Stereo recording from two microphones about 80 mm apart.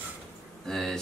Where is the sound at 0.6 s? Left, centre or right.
Centre.